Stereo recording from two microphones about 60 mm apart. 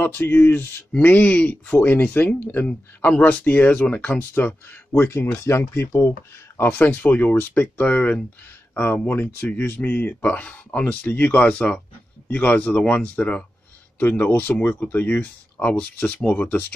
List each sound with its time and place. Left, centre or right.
0.0 s speech: left
1.0 s speech: left
5.0 s speech: left